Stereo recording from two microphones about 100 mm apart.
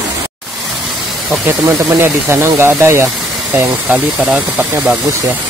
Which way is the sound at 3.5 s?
15° right (ahead or behind).